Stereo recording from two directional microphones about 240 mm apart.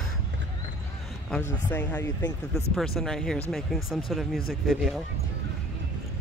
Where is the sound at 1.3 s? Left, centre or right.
Centre.